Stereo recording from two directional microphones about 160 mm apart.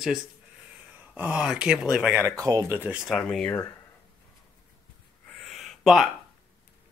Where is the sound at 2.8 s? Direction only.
5° right (ahead or behind).